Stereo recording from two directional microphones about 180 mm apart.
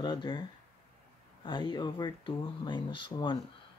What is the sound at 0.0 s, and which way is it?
Speech, 25° left (ahead or behind).